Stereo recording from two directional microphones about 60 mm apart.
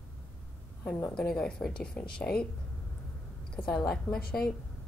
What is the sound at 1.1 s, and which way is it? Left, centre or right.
Speech, centre.